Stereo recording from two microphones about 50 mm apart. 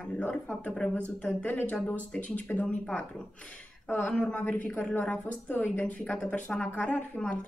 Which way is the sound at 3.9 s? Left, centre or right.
Left.